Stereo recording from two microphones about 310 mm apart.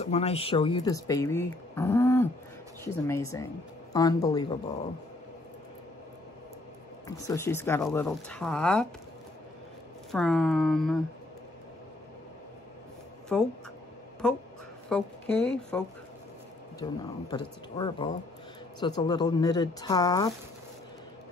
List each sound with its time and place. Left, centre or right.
0.0 s speech: centre
7.1 s speech: centre
10.1 s speech: centre
13.3 s speech: centre
16.8 s speech: centre